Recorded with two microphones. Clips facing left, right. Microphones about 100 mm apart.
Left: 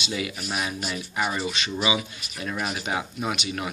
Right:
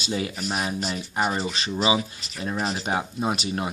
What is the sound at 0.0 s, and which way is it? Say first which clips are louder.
Speech: right 2 dB; 35° right (ahead or behind).